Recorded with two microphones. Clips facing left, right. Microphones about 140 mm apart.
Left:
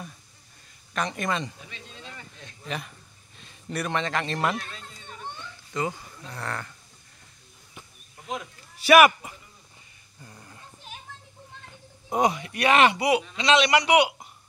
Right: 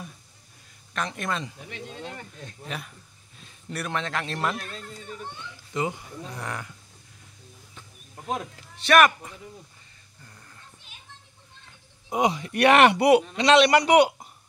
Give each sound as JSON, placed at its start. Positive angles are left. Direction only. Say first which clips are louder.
{"t": 0.9, "sound": "speech", "louder": "left 2 dB", "side_deg": 0}
{"t": 1.7, "sound": "a man's voice", "louder": "right 7 dB", "side_deg": -55}
{"t": 2.7, "sound": "speech", "louder": "left 4 dB", "side_deg": 0}
{"t": 4.6, "sound": "speech", "louder": "right 4 dB", "side_deg": -40}
{"t": 5.4, "sound": "speech", "louder": "right 1 dB", "side_deg": -15}
{"t": 8.2, "sound": "a sound", "louder": "right 3 dB", "side_deg": -40}
{"t": 8.8, "sound": "speech", "louder": "left 2 dB", "side_deg": 5}
{"t": 10.2, "sound": "a sound", "louder": "left 4 dB", "side_deg": 20}
{"t": 12.5, "sound": "a man's voice", "louder": "right 4 dB", "side_deg": -60}